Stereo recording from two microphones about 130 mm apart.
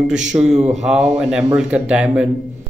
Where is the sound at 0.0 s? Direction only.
5° right (ahead or behind).